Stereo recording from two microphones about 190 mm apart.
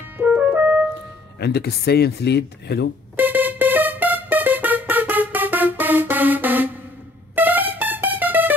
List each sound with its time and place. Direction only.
0.2 s piano: 10° right (ahead or behind)
1.4 s speech: 55° left (ahead or behind)
3.2 s music: 10° right (ahead or behind)